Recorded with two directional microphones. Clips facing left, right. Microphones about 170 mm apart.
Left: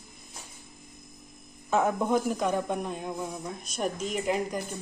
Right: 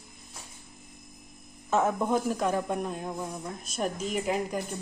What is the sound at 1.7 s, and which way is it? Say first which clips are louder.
Speech: left 1 dB; centre (ahead or behind).